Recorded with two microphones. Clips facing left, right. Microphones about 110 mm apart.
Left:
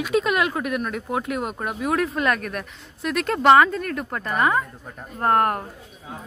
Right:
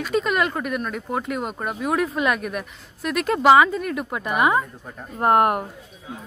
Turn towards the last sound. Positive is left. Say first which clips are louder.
# right 2 dB
turn(degrees=-15)  # may be behind; listen again after turning